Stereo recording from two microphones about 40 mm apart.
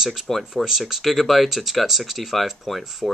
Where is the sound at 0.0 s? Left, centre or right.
Centre.